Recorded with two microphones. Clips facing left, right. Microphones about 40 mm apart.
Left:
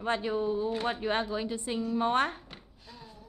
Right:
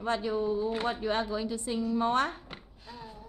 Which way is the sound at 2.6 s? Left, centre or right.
Right.